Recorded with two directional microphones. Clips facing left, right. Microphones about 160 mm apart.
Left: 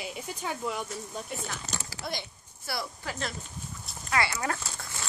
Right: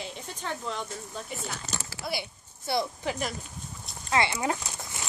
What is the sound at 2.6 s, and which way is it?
Speech, 20° right (ahead or behind).